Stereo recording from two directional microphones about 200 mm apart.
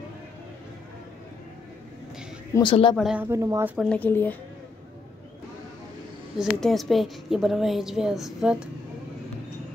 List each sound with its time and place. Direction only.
2.5 s speech: 25° left (ahead or behind)
3.0 s speech: 5° right (ahead or behind)
3.7 s speech: 5° left (ahead or behind)
6.3 s a woman's voice: centre (ahead or behind)